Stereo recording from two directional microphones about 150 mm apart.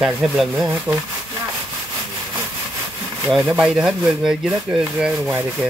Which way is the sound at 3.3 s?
5° right (ahead or behind).